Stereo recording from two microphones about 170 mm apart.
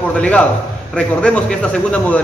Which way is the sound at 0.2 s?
5° left (ahead or behind).